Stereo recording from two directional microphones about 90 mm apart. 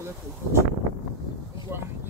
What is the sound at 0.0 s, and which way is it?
Speech, 30° right (ahead or behind).